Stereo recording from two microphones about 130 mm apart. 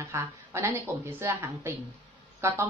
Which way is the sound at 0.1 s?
20° right (ahead or behind).